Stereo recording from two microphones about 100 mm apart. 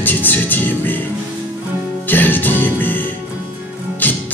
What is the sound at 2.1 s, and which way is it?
Music, 20° left (ahead or behind).